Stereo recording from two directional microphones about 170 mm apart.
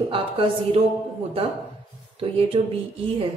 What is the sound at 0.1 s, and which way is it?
Speech, 35° right (ahead or behind).